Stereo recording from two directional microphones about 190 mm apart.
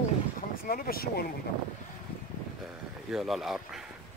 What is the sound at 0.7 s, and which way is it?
Speech, 50° left (ahead or behind).